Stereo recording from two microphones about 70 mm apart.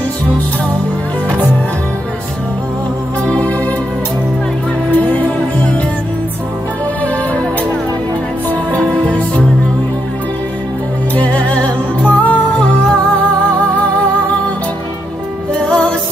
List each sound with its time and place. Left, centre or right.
3.3 s music: centre
4.9 s music: left
8.5 s music: centre
11.1 s music: centre
15.5 s music: centre